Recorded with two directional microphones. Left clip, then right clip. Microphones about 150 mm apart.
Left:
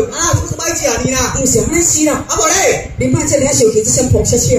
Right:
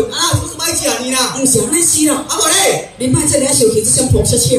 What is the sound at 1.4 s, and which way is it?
Speech, 30° left (ahead or behind).